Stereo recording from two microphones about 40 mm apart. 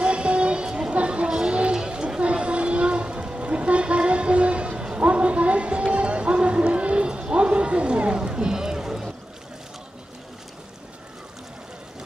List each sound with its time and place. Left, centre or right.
0.0 s a sound: right
1.5 s music: right
1.9 s train: right